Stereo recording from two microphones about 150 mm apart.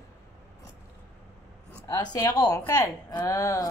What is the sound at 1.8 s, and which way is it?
Speech, 25° left (ahead or behind).